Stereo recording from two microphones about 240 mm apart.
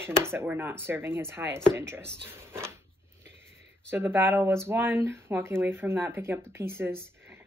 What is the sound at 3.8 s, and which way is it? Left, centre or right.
Speech, centre.